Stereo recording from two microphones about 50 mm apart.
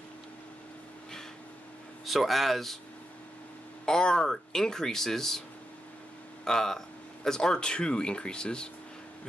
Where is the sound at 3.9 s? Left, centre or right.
Centre.